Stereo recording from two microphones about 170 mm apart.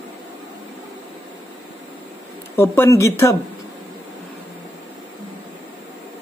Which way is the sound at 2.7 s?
15° left (ahead or behind).